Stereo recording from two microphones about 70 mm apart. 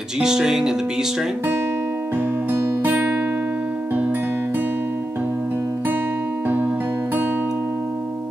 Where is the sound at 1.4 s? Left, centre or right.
Right.